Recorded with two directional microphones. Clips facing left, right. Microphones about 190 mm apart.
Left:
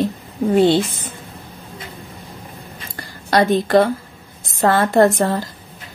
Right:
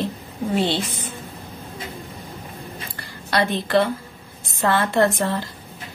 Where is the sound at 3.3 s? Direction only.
45° left (ahead or behind).